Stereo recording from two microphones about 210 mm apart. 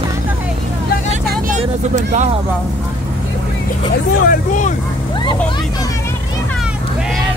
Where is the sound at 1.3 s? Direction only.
35° right (ahead or behind).